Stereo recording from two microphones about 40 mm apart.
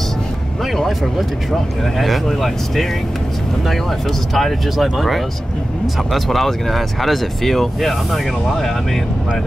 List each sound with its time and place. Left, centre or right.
0.7 s a sound: centre
2.0 s speech: centre
4.3 s speech: centre